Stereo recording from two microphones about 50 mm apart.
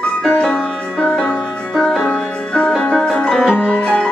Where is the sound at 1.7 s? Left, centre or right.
Centre.